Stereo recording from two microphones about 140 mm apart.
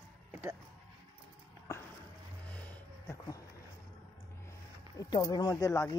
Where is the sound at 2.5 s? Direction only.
10° left (ahead or behind).